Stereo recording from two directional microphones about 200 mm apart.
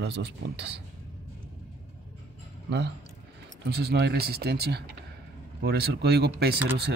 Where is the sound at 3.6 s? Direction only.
55° right (ahead or behind).